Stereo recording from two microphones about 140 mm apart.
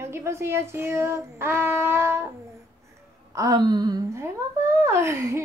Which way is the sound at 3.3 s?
25° right (ahead or behind).